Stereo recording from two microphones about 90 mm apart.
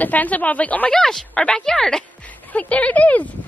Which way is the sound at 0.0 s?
15° left (ahead or behind).